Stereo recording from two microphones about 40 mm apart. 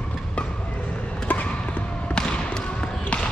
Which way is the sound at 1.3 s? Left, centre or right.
Left.